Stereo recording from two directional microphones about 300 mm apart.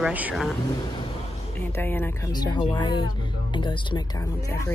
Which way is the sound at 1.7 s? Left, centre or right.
Centre.